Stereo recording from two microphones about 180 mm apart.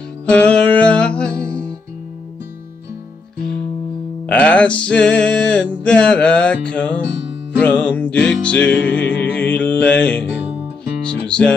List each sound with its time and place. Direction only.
0.3 s music: 5° left (ahead or behind)
4.3 s music: 5° left (ahead or behind)
7.1 s music: 75° left (ahead or behind)
7.5 s music: 5° left (ahead or behind)